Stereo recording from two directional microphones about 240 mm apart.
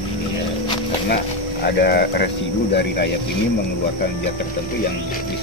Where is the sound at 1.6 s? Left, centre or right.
Left.